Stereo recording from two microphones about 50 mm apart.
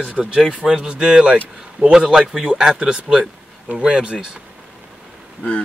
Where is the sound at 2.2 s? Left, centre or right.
Centre.